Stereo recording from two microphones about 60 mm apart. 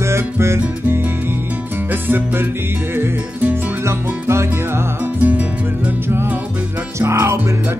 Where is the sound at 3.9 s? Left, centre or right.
Right.